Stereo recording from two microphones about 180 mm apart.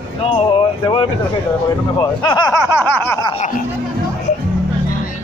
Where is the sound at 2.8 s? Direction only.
10° left (ahead or behind).